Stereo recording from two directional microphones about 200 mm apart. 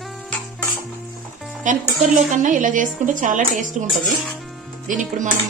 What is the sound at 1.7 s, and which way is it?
Music, 40° right (ahead or behind).